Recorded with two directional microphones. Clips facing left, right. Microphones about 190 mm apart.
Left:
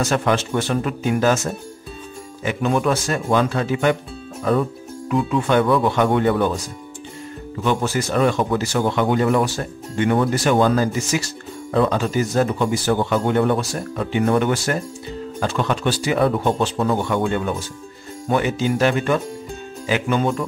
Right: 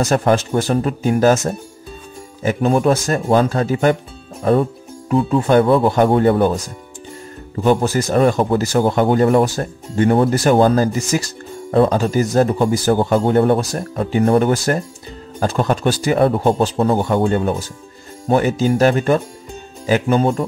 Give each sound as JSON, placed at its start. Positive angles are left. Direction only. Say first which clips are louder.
{"t": 0.0, "sound": "speech", "louder": "right 4 dB", "side_deg": -40}
{"t": 7.6, "sound": "speech", "louder": "right 5 dB", "side_deg": -40}